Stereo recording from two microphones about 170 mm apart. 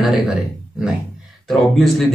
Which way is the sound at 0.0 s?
5° right (ahead or behind).